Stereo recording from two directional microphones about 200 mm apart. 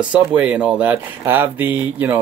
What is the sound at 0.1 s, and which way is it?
Speech, 5° right (ahead or behind).